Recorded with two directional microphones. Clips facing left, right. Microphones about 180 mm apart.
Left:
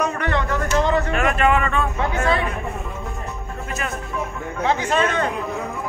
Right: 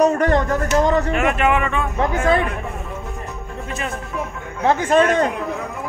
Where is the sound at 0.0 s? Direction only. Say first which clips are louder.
Right 7 dB; 40° right (ahead or behind).